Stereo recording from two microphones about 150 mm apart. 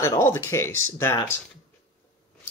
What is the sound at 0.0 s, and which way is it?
Speech, 15° left (ahead or behind).